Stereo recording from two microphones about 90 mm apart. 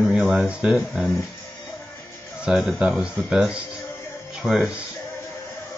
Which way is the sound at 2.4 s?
10° right (ahead or behind).